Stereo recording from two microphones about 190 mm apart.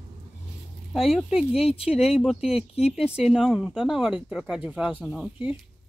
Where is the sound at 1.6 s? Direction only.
30° left (ahead or behind).